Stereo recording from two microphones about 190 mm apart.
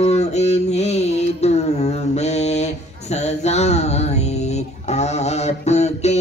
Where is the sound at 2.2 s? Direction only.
35° left (ahead or behind).